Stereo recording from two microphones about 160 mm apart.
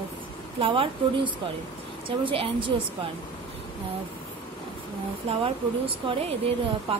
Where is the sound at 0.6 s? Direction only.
35° right (ahead or behind).